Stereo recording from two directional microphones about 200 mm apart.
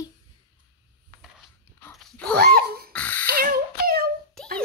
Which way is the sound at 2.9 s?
5° left (ahead or behind).